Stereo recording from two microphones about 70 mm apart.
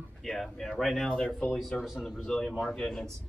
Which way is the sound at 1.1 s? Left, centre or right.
Centre.